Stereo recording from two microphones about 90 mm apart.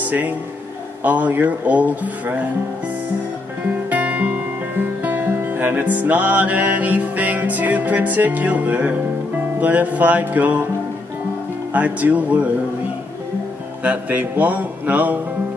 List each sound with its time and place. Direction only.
0.0 s speech: 20° right (ahead or behind)
3.9 s speech: 15° right (ahead or behind)
9.6 s music: 20° right (ahead or behind)
11.7 s speech: 20° right (ahead or behind)
13.8 s speech: 20° right (ahead or behind)